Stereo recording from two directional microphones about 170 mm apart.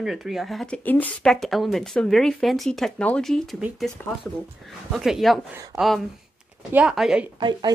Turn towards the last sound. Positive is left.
turn(degrees=-25)  # may be behind; listen again after turning